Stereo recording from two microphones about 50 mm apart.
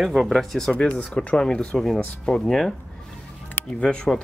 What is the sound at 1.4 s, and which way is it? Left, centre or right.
Speech, centre.